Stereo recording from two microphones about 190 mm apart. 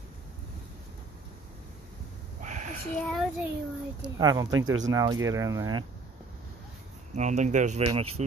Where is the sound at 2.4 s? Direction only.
40° right (ahead or behind).